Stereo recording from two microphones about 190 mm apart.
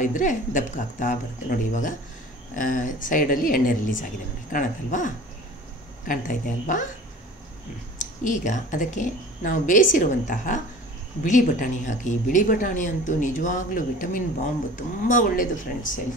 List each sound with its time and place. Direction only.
0.0 s speech: 40° left (ahead or behind)
8.0 s a woman's voice: 40° left (ahead or behind)